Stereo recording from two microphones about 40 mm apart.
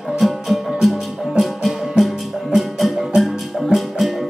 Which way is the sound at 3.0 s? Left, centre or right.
Centre.